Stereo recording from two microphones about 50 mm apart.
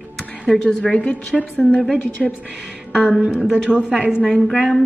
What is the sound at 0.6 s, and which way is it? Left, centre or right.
Speech, left.